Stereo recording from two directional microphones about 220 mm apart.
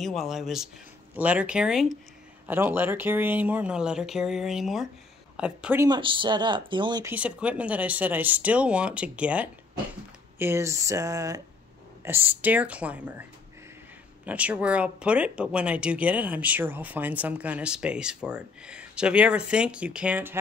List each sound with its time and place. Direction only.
0.0 s speech: centre (ahead or behind)
5.9 s speech: 20° right (ahead or behind)
7.2 s speech: 5° right (ahead or behind)
14.2 s speech: 5° right (ahead or behind)